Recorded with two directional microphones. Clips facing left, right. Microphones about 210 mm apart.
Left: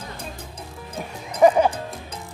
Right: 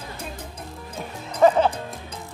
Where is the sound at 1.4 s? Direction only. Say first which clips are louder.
Left 1 dB; 15° left (ahead or behind).